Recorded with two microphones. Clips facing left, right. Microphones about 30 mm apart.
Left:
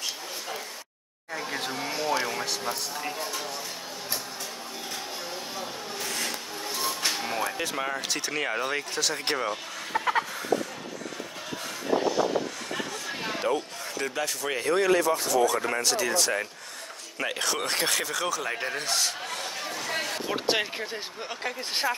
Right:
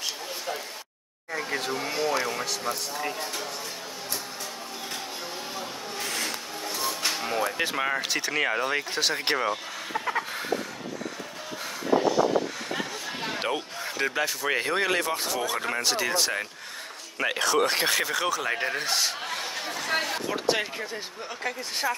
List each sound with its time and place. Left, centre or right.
1.3 s speech: centre
6.6 s music: centre
7.4 s speech: centre
8.9 s speech: right
12.7 s a sound: centre
13.5 s a sound: right
14.2 s speech: centre
14.6 s speech: right
17.2 s speech: centre
20.5 s speech: centre